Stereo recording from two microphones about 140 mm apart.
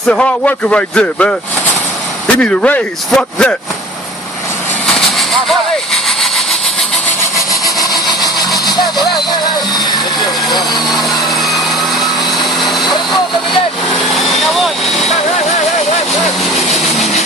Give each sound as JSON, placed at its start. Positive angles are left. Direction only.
{"t": 0.1, "sound": "speech", "side_deg": 10}
{"t": 2.3, "sound": "speech", "side_deg": 10}
{"t": 14.1, "sound": "vehicle", "side_deg": 0}
{"t": 16.5, "sound": "vehicle", "side_deg": 0}